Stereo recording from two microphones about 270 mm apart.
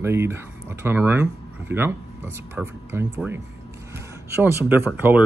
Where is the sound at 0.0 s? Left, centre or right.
Centre.